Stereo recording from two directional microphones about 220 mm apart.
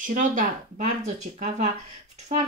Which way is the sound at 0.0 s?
35° right (ahead or behind).